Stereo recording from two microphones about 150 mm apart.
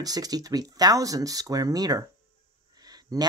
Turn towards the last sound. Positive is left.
turn(degrees=-25)  # may be behind; listen again after turning